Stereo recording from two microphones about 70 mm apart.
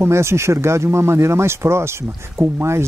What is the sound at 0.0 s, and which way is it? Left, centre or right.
Speech, right.